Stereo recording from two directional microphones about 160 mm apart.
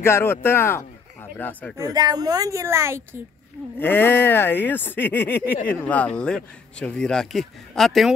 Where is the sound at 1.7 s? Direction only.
25° right (ahead or behind).